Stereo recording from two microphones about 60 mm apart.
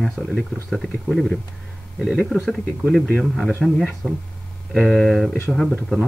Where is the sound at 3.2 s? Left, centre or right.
Centre.